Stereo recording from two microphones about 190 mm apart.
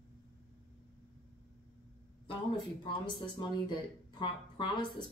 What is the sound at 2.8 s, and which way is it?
Speech, 25° left (ahead or behind).